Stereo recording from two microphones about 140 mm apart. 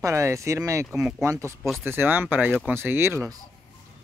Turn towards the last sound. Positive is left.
turn(degrees=-15)  # may be behind; listen again after turning